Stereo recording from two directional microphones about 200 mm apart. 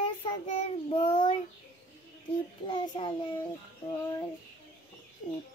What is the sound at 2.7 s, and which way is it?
Child singing, 25° left (ahead or behind).